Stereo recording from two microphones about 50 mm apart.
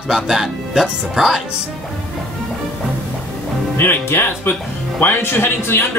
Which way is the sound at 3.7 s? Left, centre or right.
Left.